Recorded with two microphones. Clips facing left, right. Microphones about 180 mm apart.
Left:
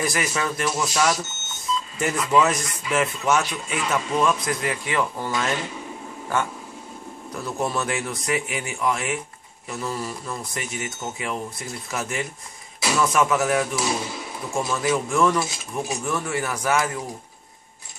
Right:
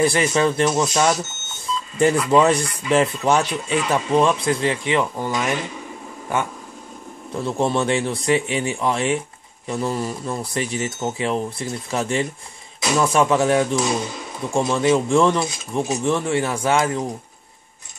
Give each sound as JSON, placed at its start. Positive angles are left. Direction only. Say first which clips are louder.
{"t": 0.0, "sound": "speech", "louder": "right 8 dB", "side_deg": -30}
{"t": 7.3, "sound": "speech", "louder": "right 6 dB", "side_deg": -25}